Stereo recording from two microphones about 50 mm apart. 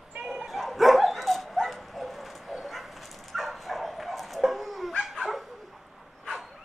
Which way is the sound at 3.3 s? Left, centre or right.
Centre.